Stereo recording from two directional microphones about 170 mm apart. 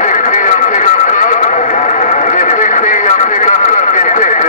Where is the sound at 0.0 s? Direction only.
50° left (ahead or behind).